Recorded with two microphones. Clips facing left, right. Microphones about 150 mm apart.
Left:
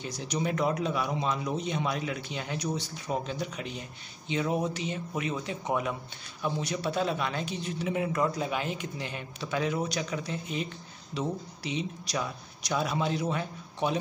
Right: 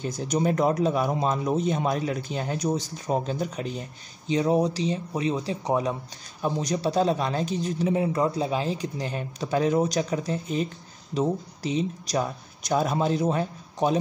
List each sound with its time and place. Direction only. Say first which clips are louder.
0.0 s a man's voice: right 6 dB; 45° right (ahead or behind)